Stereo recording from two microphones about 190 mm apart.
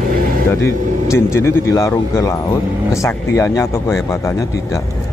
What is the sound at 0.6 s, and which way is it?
Speech, 15° left (ahead or behind).